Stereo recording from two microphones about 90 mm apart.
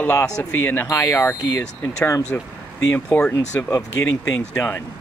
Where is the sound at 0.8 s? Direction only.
35° left (ahead or behind).